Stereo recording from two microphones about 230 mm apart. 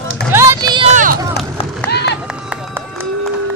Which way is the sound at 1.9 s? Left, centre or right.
Left.